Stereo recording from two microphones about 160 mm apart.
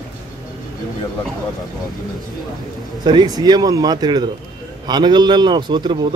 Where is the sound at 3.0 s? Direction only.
25° right (ahead or behind).